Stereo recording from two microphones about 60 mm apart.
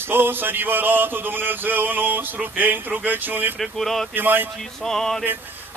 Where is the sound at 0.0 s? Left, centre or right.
Right.